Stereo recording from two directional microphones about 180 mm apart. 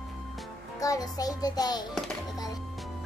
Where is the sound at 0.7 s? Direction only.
20° left (ahead or behind).